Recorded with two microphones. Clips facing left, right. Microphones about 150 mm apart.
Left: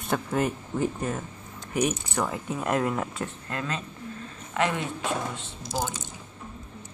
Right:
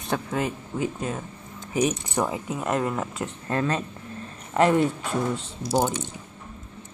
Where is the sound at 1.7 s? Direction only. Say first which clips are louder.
Right 2 dB; 5° left (ahead or behind).